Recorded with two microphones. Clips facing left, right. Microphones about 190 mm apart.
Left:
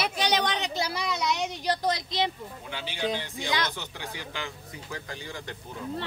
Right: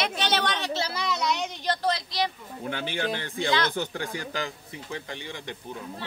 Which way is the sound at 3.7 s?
50° right (ahead or behind).